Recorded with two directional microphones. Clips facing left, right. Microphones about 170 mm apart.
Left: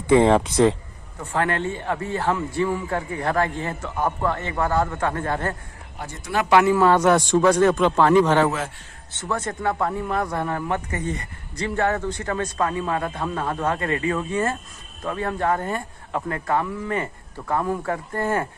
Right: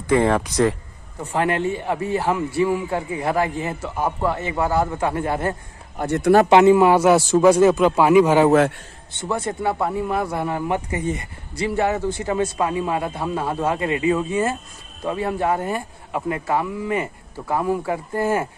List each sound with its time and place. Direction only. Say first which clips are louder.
0.1 s speech: left 2 dB; 20° left (ahead or behind)
1.2 s speech: right 3 dB; 15° right (ahead or behind)
5.9 s speech: right 17 dB; 65° right (ahead or behind)
6.5 s speech: even; 20° right (ahead or behind)